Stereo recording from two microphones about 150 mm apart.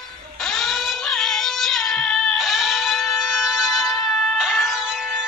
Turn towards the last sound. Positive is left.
turn(degrees=-5)  # may be behind; listen again after turning